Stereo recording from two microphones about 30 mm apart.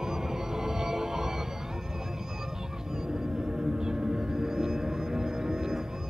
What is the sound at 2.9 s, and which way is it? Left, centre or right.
Music, centre.